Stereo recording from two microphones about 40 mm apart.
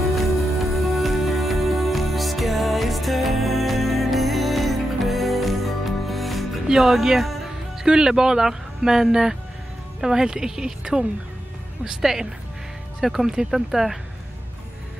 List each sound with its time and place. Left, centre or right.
0.1 s music: centre
6.8 s speech: centre
7.8 s speech: centre